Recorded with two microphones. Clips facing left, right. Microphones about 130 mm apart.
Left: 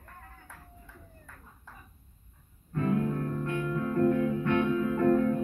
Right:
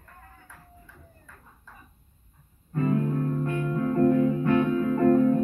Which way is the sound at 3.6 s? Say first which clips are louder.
Right 4 dB; 25° right (ahead or behind).